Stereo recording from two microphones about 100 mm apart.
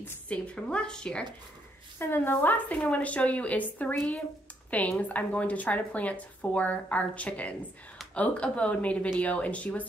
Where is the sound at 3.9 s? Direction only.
5° left (ahead or behind).